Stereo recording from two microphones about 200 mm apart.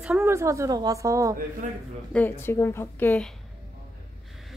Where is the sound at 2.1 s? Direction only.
10° left (ahead or behind).